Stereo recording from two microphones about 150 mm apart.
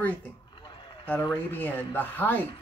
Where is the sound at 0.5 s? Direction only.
30° left (ahead or behind).